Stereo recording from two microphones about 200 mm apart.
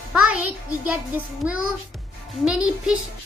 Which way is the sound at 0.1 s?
5° right (ahead or behind).